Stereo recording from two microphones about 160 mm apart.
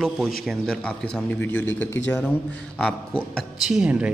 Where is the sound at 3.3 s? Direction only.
5° right (ahead or behind).